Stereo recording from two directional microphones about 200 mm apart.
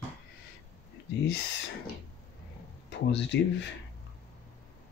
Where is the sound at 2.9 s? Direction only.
65° left (ahead or behind).